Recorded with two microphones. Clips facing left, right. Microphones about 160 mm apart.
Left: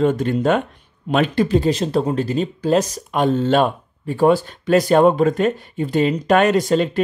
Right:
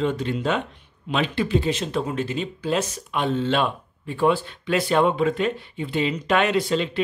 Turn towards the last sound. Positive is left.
turn(degrees=45)  # may be behind; listen again after turning